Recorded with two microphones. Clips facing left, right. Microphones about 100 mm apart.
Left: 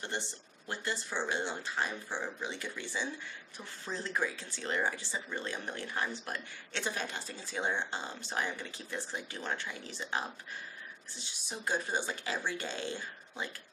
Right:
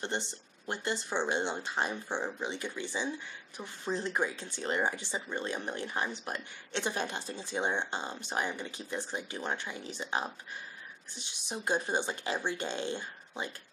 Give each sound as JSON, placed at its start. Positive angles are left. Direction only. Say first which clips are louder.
{"t": 0.0, "sound": "speech", "louder": "right 3 dB", "side_deg": -20}